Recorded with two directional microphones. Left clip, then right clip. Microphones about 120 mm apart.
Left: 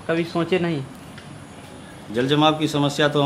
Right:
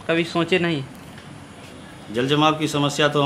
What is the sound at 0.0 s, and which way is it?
Speech, 20° right (ahead or behind).